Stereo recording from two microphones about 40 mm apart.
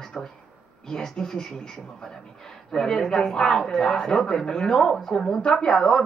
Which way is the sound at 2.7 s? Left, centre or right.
Centre.